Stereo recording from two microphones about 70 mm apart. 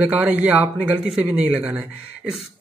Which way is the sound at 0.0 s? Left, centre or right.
Centre.